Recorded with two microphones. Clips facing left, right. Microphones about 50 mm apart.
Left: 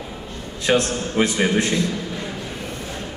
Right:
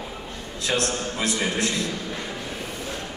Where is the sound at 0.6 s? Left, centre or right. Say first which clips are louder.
Left 6 dB; left.